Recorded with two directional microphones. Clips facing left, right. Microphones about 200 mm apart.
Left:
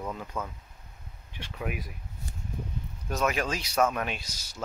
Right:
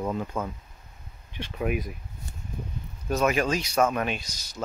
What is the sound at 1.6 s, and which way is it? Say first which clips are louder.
Speech: right 7 dB; 25° right (ahead or behind).